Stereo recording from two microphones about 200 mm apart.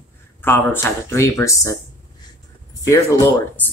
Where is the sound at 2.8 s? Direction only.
15° left (ahead or behind).